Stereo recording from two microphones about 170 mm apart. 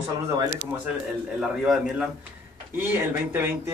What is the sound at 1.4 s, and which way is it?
A man's voice, 5° right (ahead or behind).